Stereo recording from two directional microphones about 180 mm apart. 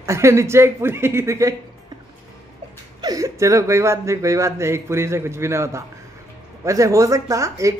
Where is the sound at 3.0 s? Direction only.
20° right (ahead or behind).